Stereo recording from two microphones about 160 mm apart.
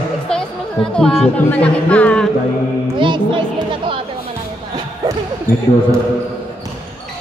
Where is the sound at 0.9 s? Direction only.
5° left (ahead or behind).